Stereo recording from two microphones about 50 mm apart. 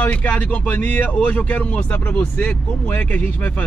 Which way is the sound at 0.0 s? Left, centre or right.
Left.